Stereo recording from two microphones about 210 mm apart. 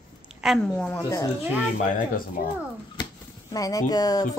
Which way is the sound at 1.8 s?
40° left (ahead or behind).